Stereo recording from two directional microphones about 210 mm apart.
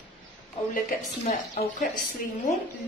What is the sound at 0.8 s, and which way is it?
Speech, 35° left (ahead or behind).